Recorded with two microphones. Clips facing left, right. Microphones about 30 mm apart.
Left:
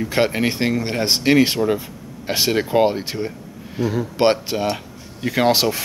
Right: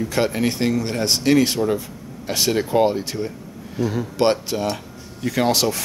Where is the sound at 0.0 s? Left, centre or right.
Left.